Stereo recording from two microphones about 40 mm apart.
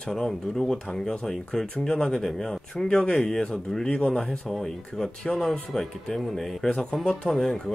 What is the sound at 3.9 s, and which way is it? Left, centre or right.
Speech, left.